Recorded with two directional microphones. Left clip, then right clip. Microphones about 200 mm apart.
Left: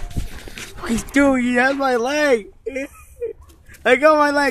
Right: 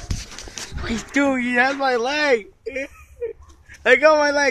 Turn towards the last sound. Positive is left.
turn(degrees=20)  # may be behind; listen again after turning